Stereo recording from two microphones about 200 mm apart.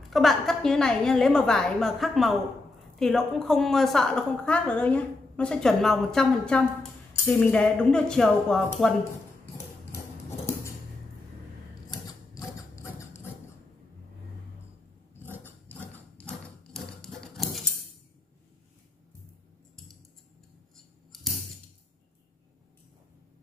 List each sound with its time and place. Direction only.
0.1 s a woman's voice: centre (ahead or behind)
11.9 s mechanisms: 20° left (ahead or behind)
15.3 s mechanisms: 10° left (ahead or behind)
20.7 s scissors: centre (ahead or behind)